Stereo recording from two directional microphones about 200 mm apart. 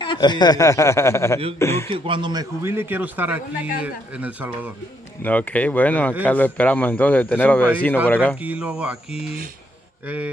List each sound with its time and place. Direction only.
0.0 s a man's voice: 20° left (ahead or behind)
1.9 s a man's voice: 25° right (ahead or behind); by 4.5 s 5° right (ahead or behind)
5.2 s a man's voice: 10° left (ahead or behind)
8.4 s a man's voice: 5° right (ahead or behind)